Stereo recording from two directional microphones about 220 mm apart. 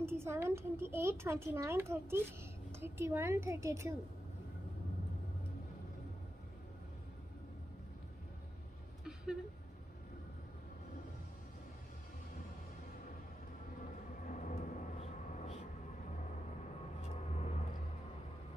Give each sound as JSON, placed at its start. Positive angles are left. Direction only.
{"t": 0.0, "sound": "speech", "side_deg": -10}
{"t": 9.0, "sound": "a sound", "side_deg": -5}
{"t": 14.2, "sound": "vehicle", "side_deg": 35}
{"t": 17.3, "sound": "vehicle", "side_deg": 30}